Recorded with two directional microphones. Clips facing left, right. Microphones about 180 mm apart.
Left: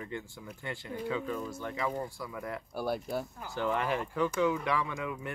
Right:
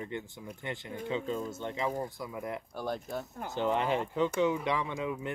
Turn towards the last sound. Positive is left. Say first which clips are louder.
# right 1 dB
turn(degrees=-20)  # may be behind; listen again after turning